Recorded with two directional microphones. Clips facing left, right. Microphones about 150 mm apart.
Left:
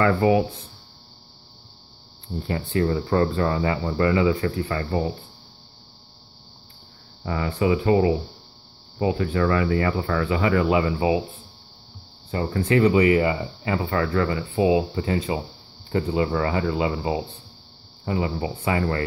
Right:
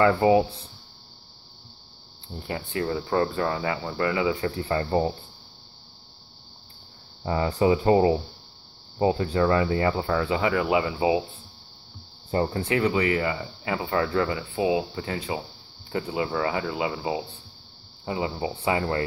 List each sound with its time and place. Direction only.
0.0 s speech: 20° right (ahead or behind)
2.4 s speech: 10° right (ahead or behind)
4.6 s speech: 30° right (ahead or behind)
7.2 s speech: 25° right (ahead or behind)
7.5 s speech: 35° right (ahead or behind)
9.0 s speech: 25° right (ahead or behind)
12.3 s speech: 35° right (ahead or behind)
12.8 s speech: 15° left (ahead or behind)
13.7 s speech: 10° right (ahead or behind)
14.5 s speech: 5° left (ahead or behind)
18.0 s speech: 15° right (ahead or behind)